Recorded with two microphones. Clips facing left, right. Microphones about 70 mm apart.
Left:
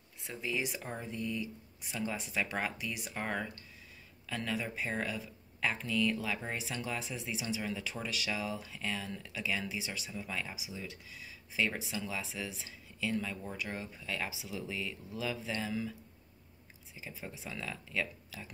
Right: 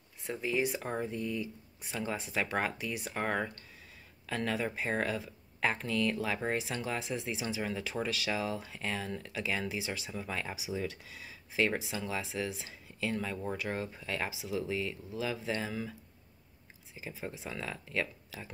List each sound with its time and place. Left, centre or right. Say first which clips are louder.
0.3 s speech: right 5 dB; right
11.1 s speech: right 3 dB; right
12.0 s speech: right 3 dB; right
12.6 s speech: right 1 dB; right
13.6 s speech: right 4 dB; right
13.9 s speech: right 2 dB; right
16.9 s speech: right 4 dB; right